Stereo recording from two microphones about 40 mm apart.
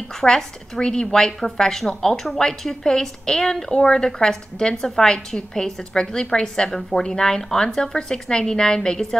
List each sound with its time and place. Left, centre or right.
0.2 s a woman's voice: centre